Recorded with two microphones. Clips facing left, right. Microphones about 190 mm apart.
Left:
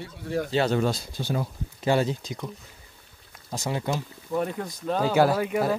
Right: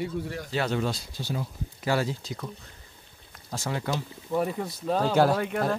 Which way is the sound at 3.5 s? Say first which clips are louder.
Left 2 dB; 20° left (ahead or behind).